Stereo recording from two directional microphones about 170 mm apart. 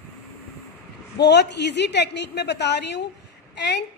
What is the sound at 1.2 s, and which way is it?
A woman's voice, 85° left.